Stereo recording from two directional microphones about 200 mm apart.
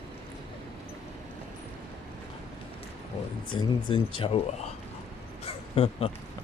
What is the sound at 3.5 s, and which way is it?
Speech, 25° left (ahead or behind).